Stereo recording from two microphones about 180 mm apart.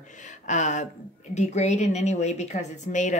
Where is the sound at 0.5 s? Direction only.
45° left (ahead or behind).